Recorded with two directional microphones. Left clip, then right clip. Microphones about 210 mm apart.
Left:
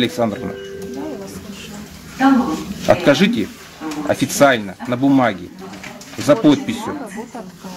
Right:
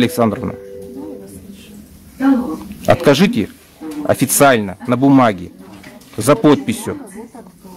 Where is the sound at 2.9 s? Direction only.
40° right (ahead or behind).